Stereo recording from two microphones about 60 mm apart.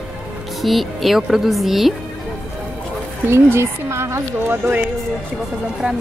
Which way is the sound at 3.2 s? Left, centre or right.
Right.